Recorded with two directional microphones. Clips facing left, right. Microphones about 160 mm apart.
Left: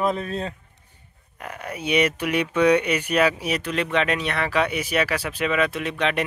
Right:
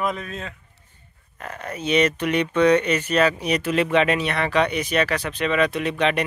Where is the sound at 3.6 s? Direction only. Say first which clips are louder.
Right 5 dB; 5° right (ahead or behind).